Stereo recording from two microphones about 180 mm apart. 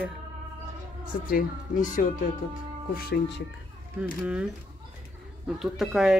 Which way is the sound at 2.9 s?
60° left (ahead or behind).